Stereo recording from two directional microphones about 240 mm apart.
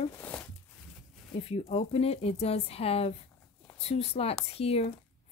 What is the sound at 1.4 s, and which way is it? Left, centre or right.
Speech, left.